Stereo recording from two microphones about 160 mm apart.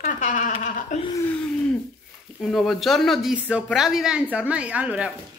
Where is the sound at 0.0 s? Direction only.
55° left (ahead or behind).